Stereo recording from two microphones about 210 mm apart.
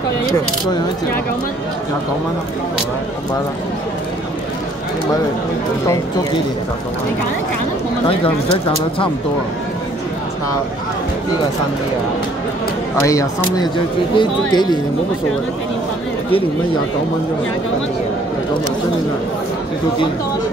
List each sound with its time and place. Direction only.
13.0 s speech: 15° left (ahead or behind)